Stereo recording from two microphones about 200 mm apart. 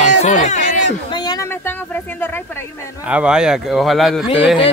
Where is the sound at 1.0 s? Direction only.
20° left (ahead or behind).